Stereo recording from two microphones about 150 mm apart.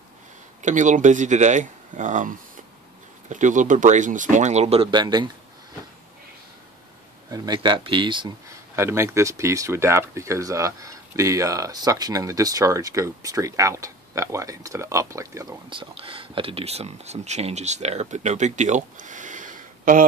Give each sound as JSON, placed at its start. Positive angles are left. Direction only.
{"t": 0.6, "sound": "speech", "side_deg": -55}
{"t": 4.9, "sound": "speech", "side_deg": -30}
{"t": 7.2, "sound": "speech", "side_deg": -25}
{"t": 8.7, "sound": "speech", "side_deg": -20}
{"t": 15.7, "sound": "speech", "side_deg": -35}